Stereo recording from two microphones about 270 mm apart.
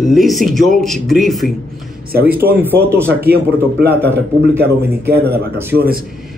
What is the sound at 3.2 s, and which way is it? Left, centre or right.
Speech, right.